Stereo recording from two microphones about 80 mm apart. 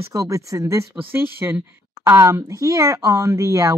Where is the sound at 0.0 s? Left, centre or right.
Right.